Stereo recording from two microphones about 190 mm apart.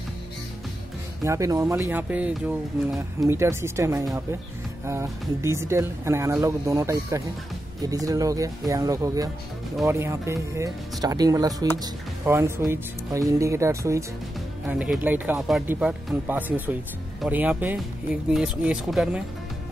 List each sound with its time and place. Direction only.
1.2 s speech: 15° right (ahead or behind)